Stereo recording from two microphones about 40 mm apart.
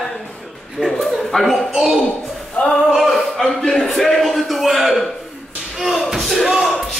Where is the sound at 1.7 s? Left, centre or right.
Centre.